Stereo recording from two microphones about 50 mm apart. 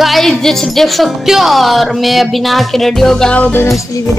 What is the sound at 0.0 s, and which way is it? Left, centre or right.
Speech, centre.